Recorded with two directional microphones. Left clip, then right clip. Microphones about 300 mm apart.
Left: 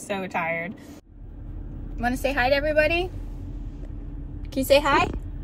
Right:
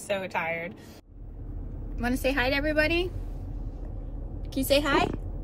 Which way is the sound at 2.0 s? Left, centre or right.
Centre.